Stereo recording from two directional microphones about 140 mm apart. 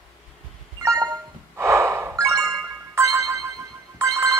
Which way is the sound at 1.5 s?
20° right (ahead or behind).